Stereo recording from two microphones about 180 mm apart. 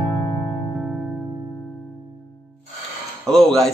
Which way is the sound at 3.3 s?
Centre (ahead or behind).